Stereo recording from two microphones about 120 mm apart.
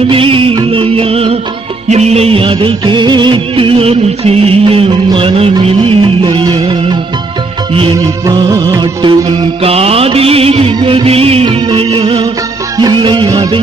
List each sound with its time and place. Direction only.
0.1 s music of bollywood: 50° right (ahead or behind)
0.7 s music: 50° right (ahead or behind)
1.9 s music of bollywood: 65° right (ahead or behind); by 7.0 s 40° right (ahead or behind)
8.3 s music of bollywood: 35° right (ahead or behind); by 10.7 s 55° right (ahead or behind)
10.8 s music: 40° right (ahead or behind)
11.1 s music: 55° right (ahead or behind)
11.4 s music: 40° right (ahead or behind)